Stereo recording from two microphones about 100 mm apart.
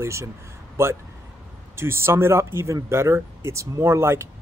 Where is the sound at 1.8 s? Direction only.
25° right (ahead or behind).